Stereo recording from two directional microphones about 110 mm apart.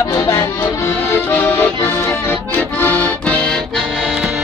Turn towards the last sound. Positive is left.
turn(degrees=10)  # may be behind; listen again after turning